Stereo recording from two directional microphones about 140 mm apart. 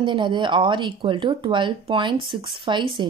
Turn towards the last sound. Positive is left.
turn(degrees=-35)  # may be behind; listen again after turning